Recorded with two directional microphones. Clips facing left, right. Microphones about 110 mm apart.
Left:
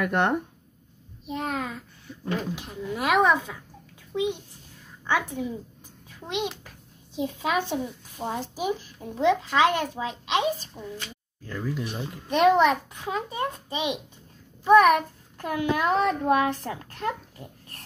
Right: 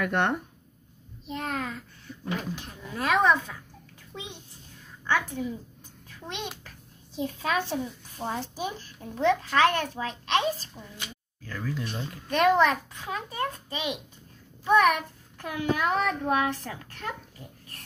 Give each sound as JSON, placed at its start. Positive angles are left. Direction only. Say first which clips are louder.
{"t": 0.0, "sound": "a child's voice", "louder": "left 2 dB", "side_deg": 20}
{"t": 14.6, "sound": "child singing", "louder": "left 5 dB", "side_deg": 35}
{"t": 16.0, "sound": "a child's voice", "louder": "left 4 dB", "side_deg": 35}